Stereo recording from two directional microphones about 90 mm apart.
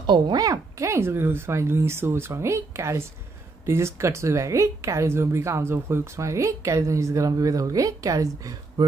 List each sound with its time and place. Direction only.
0.0 s speech: 50° right (ahead or behind)